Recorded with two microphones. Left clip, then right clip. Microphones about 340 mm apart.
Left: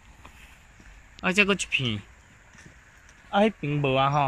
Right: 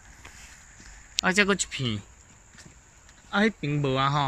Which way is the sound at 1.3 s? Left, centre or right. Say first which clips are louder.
Left 1 dB; centre.